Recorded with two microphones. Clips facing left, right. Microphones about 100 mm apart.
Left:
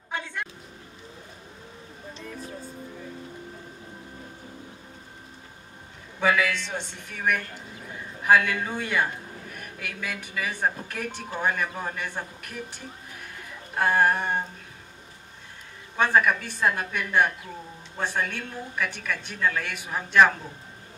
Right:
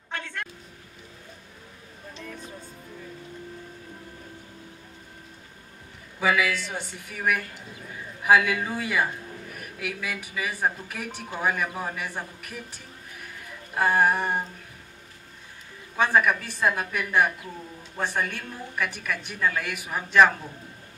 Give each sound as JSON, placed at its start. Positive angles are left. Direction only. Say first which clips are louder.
{"t": 0.1, "sound": "a sound", "louder": "left 2 dB", "side_deg": 15}
{"t": 6.1, "sound": "speech", "louder": "even", "side_deg": -5}
{"t": 16.0, "sound": "speech", "louder": "even", "side_deg": -5}